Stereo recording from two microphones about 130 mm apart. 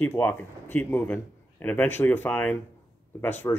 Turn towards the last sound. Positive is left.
turn(degrees=20)  # may be behind; listen again after turning